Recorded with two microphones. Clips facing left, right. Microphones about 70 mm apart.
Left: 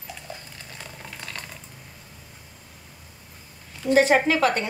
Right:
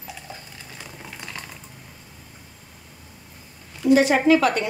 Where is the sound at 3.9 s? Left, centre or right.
Left.